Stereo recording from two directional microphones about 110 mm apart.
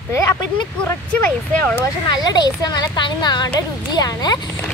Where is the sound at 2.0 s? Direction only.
40° left (ahead or behind).